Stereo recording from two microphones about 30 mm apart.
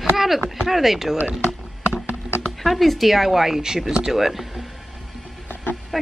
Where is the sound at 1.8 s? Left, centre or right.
Right.